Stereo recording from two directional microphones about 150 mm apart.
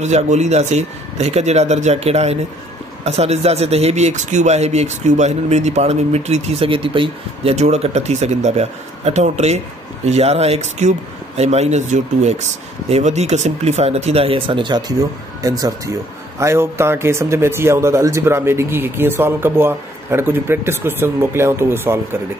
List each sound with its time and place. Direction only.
0.0 s speech: 50° right (ahead or behind)
7.5 s speech: 45° right (ahead or behind); by 22.2 s 15° right (ahead or behind)